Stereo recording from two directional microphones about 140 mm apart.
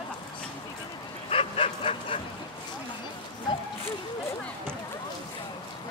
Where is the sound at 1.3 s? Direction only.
40° left (ahead or behind).